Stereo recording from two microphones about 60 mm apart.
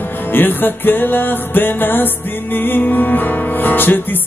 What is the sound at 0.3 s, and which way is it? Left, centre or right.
Music, left.